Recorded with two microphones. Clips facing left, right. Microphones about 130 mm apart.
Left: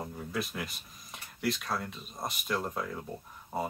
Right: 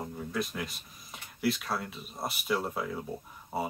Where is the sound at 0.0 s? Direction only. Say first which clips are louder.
Right 2 dB; centre (ahead or behind).